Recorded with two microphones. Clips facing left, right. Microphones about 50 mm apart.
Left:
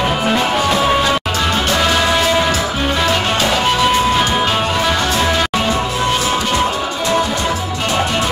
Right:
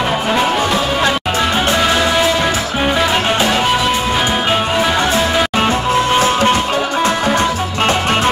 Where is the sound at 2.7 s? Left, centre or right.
Centre.